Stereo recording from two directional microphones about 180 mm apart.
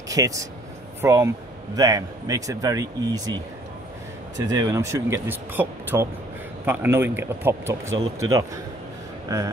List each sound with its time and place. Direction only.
0.1 s speech: 20° right (ahead or behind)